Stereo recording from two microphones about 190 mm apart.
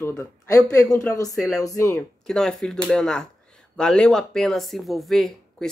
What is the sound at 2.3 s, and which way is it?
Speech, 5° left (ahead or behind).